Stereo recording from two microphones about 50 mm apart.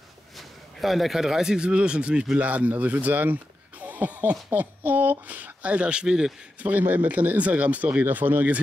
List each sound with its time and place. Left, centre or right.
0.4 s speech: centre
6.6 s speech: right